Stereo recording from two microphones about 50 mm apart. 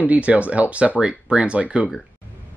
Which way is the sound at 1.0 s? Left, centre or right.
Centre.